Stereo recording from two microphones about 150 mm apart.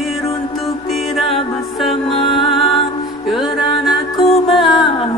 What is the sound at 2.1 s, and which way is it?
Music, 35° left (ahead or behind).